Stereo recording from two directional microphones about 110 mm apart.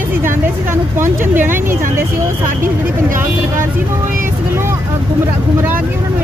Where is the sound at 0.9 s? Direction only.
20° right (ahead or behind).